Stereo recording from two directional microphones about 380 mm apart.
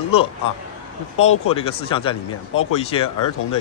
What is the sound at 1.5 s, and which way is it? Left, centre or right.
Speech, centre.